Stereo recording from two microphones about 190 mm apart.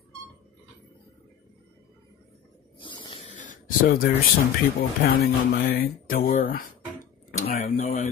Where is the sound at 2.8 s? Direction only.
25° left (ahead or behind).